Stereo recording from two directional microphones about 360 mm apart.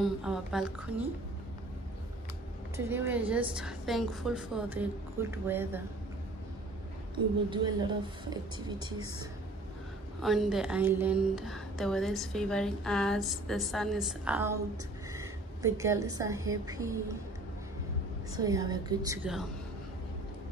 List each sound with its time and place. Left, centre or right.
0.0 s a woman's voice: centre
2.7 s a woman's voice: centre
7.4 s speech: centre
10.2 s a woman's voice: centre
18.3 s speech: centre